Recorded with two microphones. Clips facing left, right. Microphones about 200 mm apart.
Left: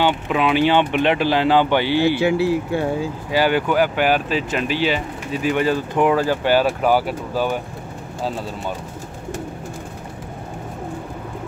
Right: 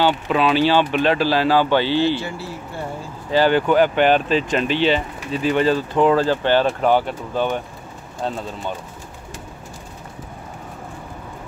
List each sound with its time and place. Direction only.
0.0 s speech: 15° left (ahead or behind)
2.2 s speech: 90° left
3.3 s speech: 10° left (ahead or behind)